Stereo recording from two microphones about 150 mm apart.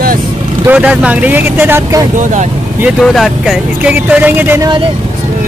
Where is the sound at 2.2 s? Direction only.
55° right (ahead or behind).